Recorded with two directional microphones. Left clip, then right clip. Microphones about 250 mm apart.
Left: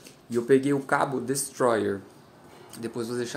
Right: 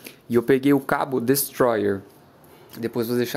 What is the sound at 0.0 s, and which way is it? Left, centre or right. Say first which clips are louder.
Speech: right 7 dB; right.